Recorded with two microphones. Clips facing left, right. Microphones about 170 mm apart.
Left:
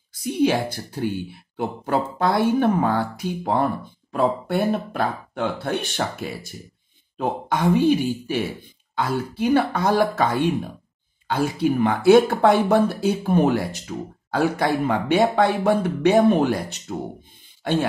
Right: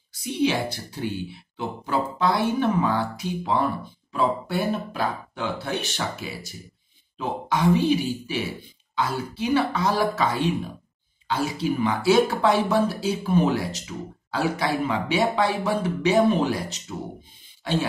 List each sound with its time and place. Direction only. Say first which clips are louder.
0.1 s speech: left 4 dB; 50° left (ahead or behind)